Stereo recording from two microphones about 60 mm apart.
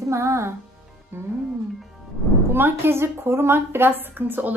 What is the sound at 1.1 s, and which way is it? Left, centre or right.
Speech, right.